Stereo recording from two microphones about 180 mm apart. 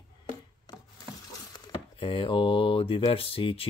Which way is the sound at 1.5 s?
25° left (ahead or behind).